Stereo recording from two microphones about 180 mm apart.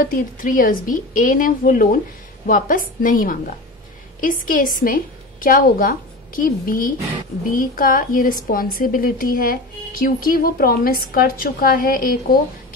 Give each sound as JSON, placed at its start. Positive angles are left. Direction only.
{"t": 0.0, "sound": "a woman's voice", "side_deg": 50}